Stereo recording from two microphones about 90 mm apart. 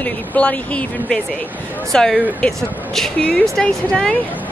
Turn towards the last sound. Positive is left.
turn(degrees=10)  # may be behind; listen again after turning